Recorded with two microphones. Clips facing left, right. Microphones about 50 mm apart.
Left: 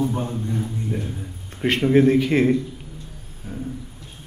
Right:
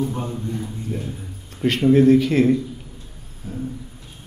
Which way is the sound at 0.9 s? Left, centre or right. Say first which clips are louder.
Even; left.